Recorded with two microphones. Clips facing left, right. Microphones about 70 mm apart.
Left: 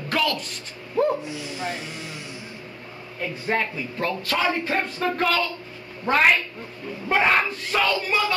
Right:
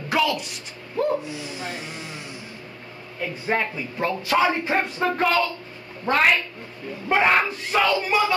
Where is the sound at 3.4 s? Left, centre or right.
Centre.